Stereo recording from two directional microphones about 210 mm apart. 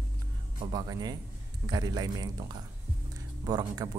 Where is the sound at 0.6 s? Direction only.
20° right (ahead or behind).